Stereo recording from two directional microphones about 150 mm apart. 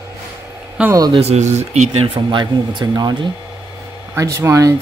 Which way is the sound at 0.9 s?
25° right (ahead or behind).